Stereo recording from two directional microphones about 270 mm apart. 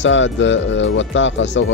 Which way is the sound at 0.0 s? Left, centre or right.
Left.